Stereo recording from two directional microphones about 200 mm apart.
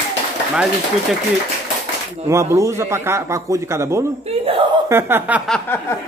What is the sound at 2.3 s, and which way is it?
A man's voice, 15° right (ahead or behind).